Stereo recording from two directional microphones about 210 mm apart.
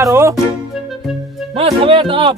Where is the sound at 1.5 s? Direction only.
25° right (ahead or behind).